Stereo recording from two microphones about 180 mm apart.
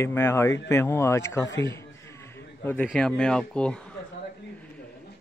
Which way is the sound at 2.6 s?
10° left (ahead or behind).